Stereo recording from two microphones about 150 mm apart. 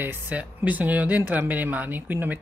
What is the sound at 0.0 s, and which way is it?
Speech, 10° right (ahead or behind).